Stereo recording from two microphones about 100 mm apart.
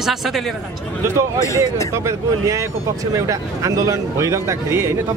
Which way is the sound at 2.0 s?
30° right (ahead or behind).